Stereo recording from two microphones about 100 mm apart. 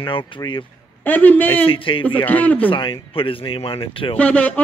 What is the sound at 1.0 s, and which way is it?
Speech, 15° left (ahead or behind).